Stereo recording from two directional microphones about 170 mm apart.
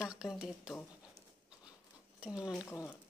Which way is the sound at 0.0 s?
Centre (ahead or behind).